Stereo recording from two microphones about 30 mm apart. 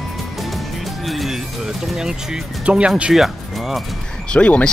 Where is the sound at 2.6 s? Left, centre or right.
Right.